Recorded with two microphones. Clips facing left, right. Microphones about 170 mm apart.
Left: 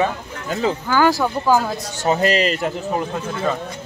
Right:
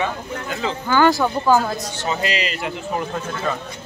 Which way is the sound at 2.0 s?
45° left (ahead or behind).